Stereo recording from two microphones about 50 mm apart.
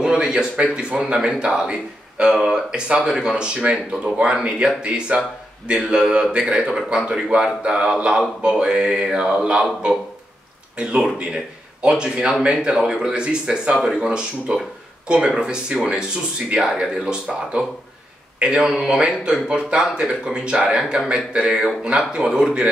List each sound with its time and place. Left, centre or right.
0.0 s a man's voice: centre
11.8 s a man's voice: right